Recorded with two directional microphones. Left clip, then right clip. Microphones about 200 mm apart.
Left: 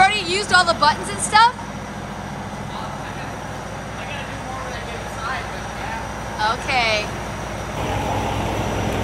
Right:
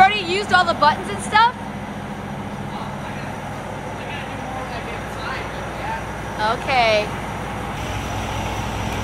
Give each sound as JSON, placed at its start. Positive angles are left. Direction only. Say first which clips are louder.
{"t": 0.0, "sound": "vehicle", "louder": "right 1 dB", "side_deg": 15}
{"t": 6.4, "sound": "speech", "louder": "right 2 dB", "side_deg": 10}